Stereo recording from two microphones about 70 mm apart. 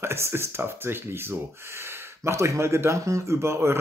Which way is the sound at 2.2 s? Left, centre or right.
Right.